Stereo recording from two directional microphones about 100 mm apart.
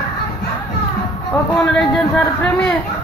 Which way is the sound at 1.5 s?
10° left (ahead or behind).